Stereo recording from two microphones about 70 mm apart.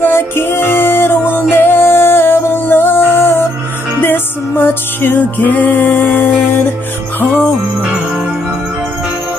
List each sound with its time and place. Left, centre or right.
0.0 s music: left